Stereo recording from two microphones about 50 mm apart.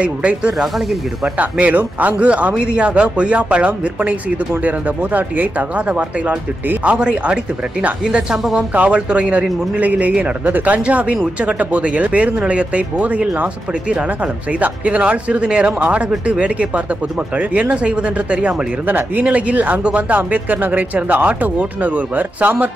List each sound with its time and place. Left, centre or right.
0.0 s speech: right
0.6 s speech: centre
1.4 s speech: right
18.9 s speech: right
19.2 s speech: right